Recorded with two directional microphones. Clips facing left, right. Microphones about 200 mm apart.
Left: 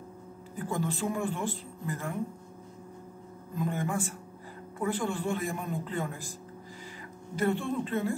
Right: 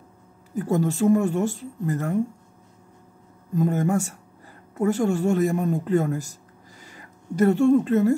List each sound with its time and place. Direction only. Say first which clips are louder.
0.6 s speech: right 10 dB; 45° right (ahead or behind)
3.5 s speech: right 9 dB; 45° right (ahead or behind)
7.3 s speech: right 12 dB; 45° right (ahead or behind)